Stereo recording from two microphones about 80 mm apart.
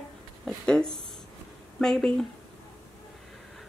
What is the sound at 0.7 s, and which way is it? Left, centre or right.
Speech, centre.